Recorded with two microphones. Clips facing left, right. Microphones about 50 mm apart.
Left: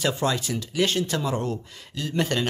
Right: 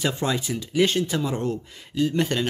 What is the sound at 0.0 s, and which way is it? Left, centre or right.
Speech, centre.